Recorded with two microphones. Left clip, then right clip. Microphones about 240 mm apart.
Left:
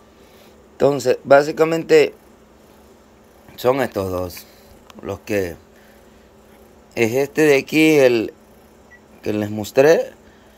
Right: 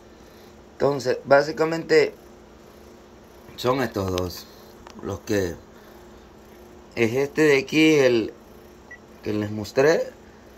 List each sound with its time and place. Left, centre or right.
0.7 s a man's voice: left
3.5 s speech: centre
5.2 s speech: centre
6.9 s a man's voice: left